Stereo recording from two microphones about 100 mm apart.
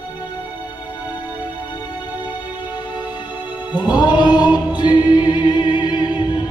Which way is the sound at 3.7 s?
45° left (ahead or behind).